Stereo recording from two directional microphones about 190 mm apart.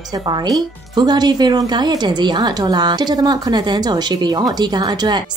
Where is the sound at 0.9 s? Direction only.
20° right (ahead or behind).